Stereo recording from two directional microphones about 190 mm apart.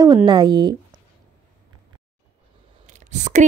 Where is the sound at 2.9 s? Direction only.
40° right (ahead or behind).